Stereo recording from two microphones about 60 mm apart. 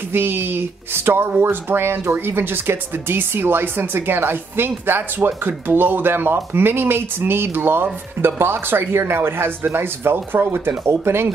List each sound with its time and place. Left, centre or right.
0.1 s speech: right